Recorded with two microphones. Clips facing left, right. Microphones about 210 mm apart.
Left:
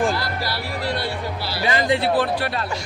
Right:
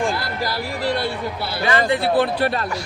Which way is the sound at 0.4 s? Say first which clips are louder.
Right 3 dB; 50° right (ahead or behind).